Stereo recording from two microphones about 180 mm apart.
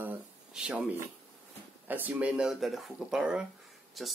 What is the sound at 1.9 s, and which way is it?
Speech, 10° right (ahead or behind).